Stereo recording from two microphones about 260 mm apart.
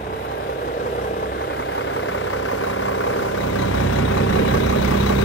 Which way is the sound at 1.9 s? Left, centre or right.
Left.